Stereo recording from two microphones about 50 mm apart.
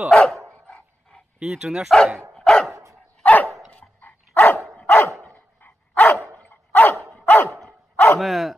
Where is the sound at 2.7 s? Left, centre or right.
Right.